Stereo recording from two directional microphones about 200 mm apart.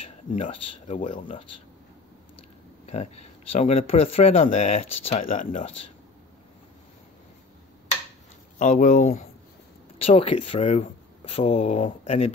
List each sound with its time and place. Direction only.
0.0 s speech: 30° left (ahead or behind)
2.9 s speech: 35° left (ahead or behind)
8.5 s speech: 40° left (ahead or behind)
10.0 s speech: 30° left (ahead or behind)